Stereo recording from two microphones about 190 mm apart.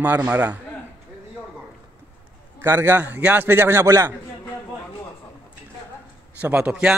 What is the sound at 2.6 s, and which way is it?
A man's voice, 10° right (ahead or behind).